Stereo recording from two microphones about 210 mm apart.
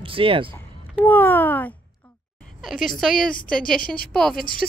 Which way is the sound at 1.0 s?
10° left (ahead or behind).